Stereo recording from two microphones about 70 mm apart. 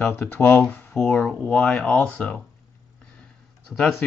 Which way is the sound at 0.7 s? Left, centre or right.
Centre.